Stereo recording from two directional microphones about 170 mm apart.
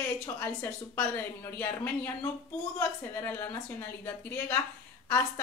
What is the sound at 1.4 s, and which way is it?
Speech, 15° left (ahead or behind).